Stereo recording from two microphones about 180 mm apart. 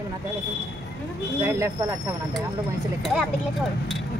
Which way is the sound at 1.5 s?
15° right (ahead or behind).